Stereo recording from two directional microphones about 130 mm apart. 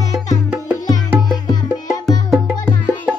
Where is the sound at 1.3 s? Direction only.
30° left (ahead or behind).